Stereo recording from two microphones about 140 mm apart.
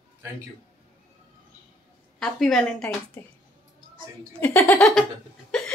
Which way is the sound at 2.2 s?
5° left (ahead or behind).